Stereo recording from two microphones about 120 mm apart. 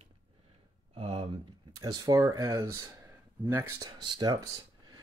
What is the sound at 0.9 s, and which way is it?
Speech, 45° right (ahead or behind).